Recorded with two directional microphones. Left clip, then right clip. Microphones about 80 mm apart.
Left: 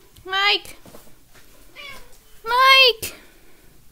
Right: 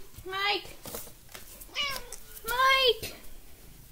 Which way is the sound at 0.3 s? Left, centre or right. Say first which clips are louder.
Left 11 dB; left.